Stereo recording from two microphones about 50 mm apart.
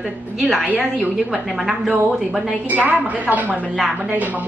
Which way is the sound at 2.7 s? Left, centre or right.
Right.